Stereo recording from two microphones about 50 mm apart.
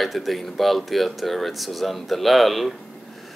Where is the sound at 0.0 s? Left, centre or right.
Centre.